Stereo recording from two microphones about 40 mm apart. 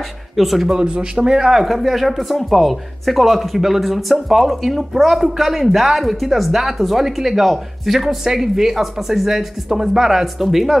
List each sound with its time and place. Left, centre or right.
0.4 s speech: centre
0.7 s speech: right; by 10.8 s centre